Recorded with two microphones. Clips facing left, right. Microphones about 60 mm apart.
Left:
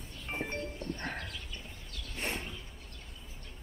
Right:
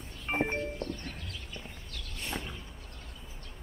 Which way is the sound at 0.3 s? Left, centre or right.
Right.